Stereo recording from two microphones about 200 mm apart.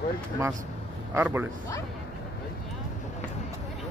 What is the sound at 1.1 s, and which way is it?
Speech, 10° right (ahead or behind).